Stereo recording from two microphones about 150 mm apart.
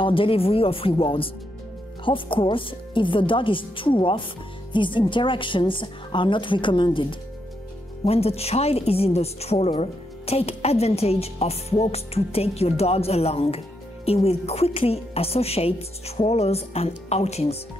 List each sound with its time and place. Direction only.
0.0 s a woman's voice: 35° left (ahead or behind)